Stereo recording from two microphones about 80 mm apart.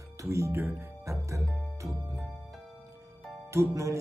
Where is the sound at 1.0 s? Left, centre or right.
Right.